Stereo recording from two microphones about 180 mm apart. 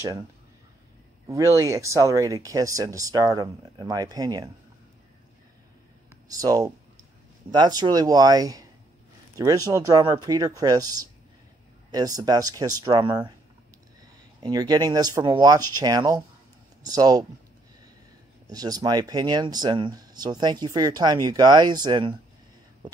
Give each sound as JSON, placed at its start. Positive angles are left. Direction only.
{"t": 1.2, "sound": "speech", "side_deg": -15}
{"t": 6.2, "sound": "speech", "side_deg": -20}
{"t": 14.4, "sound": "speech", "side_deg": -20}
{"t": 18.5, "sound": "speech", "side_deg": -20}